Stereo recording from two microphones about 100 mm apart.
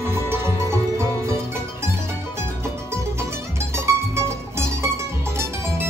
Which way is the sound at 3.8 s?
30° right (ahead or behind).